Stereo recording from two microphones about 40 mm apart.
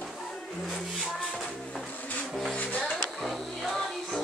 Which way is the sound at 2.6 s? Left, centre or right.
Left.